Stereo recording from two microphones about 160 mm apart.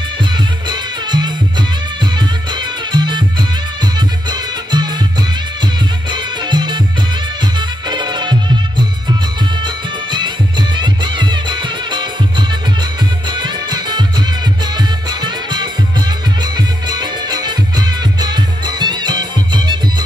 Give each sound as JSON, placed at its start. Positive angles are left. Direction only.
{"t": 0.7, "sound": "music", "side_deg": -30}
{"t": 6.0, "sound": "music", "side_deg": -30}
{"t": 7.9, "sound": "music", "side_deg": -30}
{"t": 10.8, "sound": "music", "side_deg": -30}